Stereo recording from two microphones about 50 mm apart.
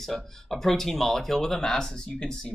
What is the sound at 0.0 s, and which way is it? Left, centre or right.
Speech, centre.